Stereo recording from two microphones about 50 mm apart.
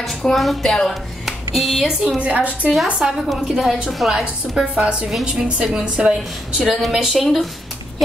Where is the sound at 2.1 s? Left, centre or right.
Right.